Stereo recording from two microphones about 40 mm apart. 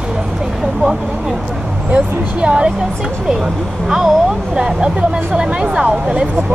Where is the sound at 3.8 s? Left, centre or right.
Centre.